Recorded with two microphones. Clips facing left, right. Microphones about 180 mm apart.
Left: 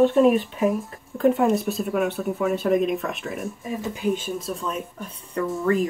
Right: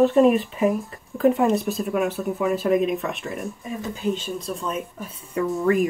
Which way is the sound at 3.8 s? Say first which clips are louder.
Left 1 dB; 15° left (ahead or behind).